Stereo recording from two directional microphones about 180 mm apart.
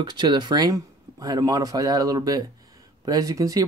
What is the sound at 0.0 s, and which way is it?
Speech, 25° right (ahead or behind).